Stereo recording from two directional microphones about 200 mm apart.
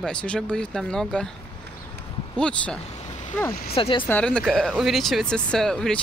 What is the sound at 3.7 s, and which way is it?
Speech, 25° left (ahead or behind).